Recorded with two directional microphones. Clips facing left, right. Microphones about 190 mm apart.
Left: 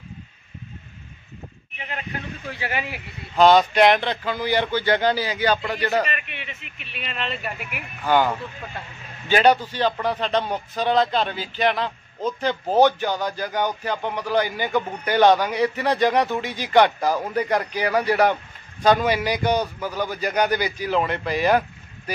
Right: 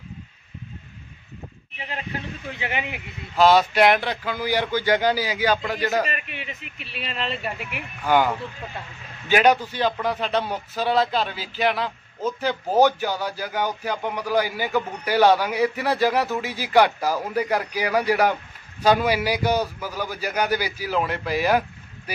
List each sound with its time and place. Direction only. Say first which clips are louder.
1.8 s speech: right 1 dB; 30° right (ahead or behind)
3.3 s speech: left 2 dB; 5° right (ahead or behind)
6.0 s speech: even; 35° right (ahead or behind)
8.0 s speech: even; 10° right (ahead or behind)